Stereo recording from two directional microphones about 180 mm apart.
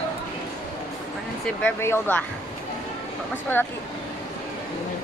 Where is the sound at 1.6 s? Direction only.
10° left (ahead or behind).